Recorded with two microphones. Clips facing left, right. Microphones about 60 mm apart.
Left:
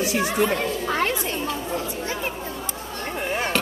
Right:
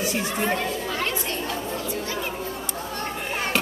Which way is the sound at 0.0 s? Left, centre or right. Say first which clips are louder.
Left 3 dB; left.